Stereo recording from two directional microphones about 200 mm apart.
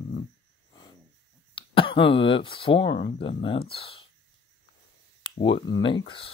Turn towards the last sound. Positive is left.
turn(degrees=25)  # may be behind; listen again after turning